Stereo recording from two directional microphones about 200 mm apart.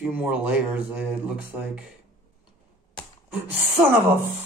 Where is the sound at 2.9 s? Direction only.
Centre (ahead or behind).